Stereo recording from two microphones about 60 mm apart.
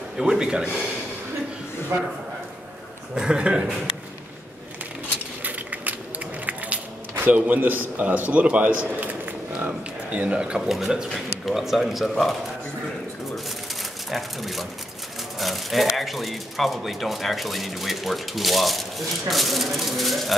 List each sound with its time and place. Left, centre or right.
0.2 s speech: centre
3.2 s speech: centre
5.4 s a sound: right
6.4 s speech: right
9.2 s a sound: right
10.2 s speech: centre
10.7 s speech: centre
14.1 s speech: centre